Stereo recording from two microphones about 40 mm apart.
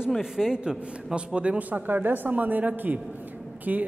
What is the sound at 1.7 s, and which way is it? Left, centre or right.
Speech, right.